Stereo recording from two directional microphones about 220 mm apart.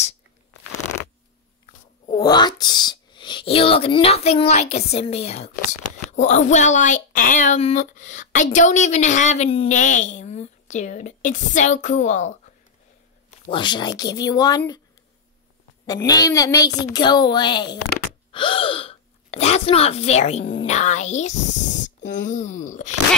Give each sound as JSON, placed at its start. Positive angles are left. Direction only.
{"t": 2.1, "sound": "a woman's voice", "side_deg": 20}
{"t": 13.5, "sound": "speech", "side_deg": 20}
{"t": 16.1, "sound": "a child's voice", "side_deg": 15}
{"t": 18.3, "sound": "gasp", "side_deg": 25}
{"t": 20.6, "sound": "a woman's voice", "side_deg": 30}